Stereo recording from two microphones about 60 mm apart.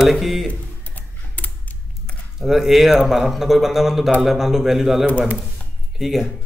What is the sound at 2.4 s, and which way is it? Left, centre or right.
A man's voice, centre.